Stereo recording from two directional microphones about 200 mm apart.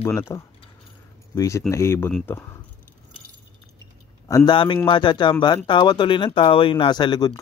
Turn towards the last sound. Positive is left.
turn(degrees=20)  # may be behind; listen again after turning